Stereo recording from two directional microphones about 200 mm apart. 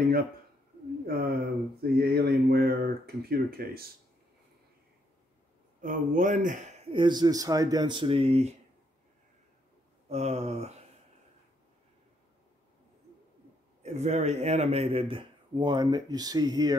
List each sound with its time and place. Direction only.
1.0 s speech: 50° right (ahead or behind)
5.8 s speech: 40° right (ahead or behind)
6.9 s speech: 25° right (ahead or behind)
10.0 s speech: 30° right (ahead or behind)
13.8 s speech: 35° right (ahead or behind)